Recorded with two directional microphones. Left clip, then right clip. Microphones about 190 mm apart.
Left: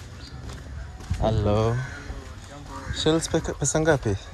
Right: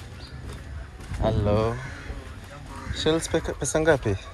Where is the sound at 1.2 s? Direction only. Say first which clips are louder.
Even; 30° left (ahead or behind).